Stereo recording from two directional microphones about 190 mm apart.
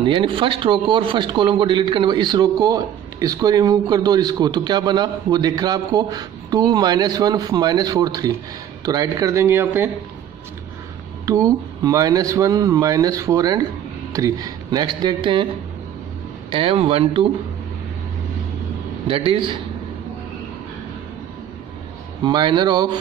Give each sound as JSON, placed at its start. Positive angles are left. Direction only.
{"t": 0.0, "sound": "speech", "side_deg": -25}
{"t": 11.2, "sound": "speech", "side_deg": -20}
{"t": 16.4, "sound": "speech", "side_deg": -30}
{"t": 19.0, "sound": "speech", "side_deg": -30}
{"t": 22.2, "sound": "speech", "side_deg": -25}